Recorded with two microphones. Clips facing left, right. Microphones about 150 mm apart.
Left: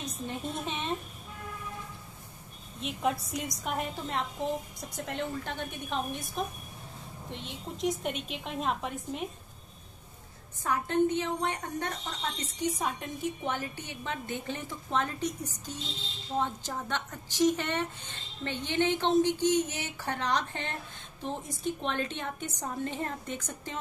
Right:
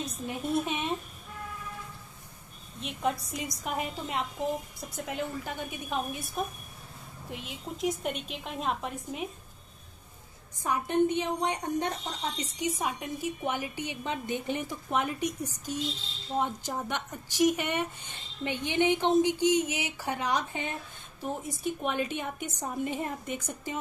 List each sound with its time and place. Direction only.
0.0 s a sound: 10° right (ahead or behind)
2.8 s a woman's voice: centre (ahead or behind)
10.6 s a woman's voice: 15° right (ahead or behind)